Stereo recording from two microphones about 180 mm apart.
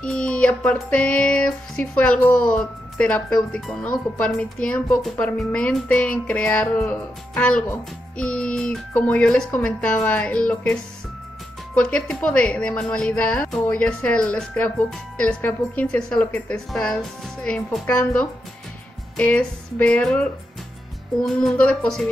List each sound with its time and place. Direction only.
0.0 s music: 5° left (ahead or behind)
11.7 s speech: 5° left (ahead or behind)
17.7 s music: 5° left (ahead or behind)
21.3 s speech: 5° left (ahead or behind)